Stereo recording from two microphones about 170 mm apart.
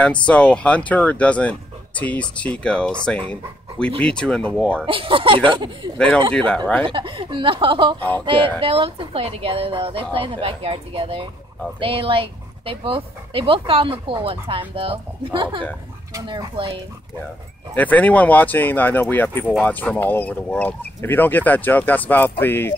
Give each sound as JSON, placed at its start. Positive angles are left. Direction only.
{"t": 0.3, "sound": "speech", "side_deg": 5}
{"t": 4.8, "sound": "speech", "side_deg": -30}
{"t": 5.9, "sound": "speech", "side_deg": 5}
{"t": 6.9, "sound": "speech", "side_deg": -30}
{"t": 17.7, "sound": "speech", "side_deg": 10}